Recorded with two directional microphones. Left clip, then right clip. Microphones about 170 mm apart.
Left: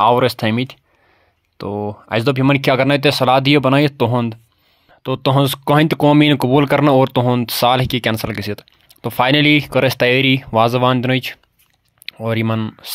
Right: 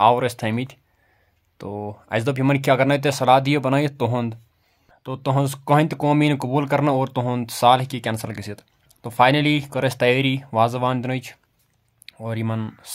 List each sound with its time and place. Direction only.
0.0 s speech: 30° left (ahead or behind)